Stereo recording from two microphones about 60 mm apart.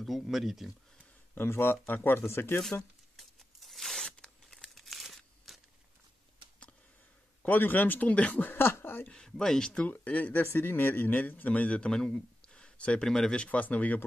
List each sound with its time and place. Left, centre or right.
0.0 s speech: centre
1.3 s speech: left
3.2 s tearing: centre
7.4 s speech: left
8.1 s a man's voice: left
8.4 s speech: left
9.1 s speech: centre
10.0 s a man's voice: left
10.4 s a man's voice: left; by 13.1 s centre
13.1 s speech: centre
13.4 s a man's voice: left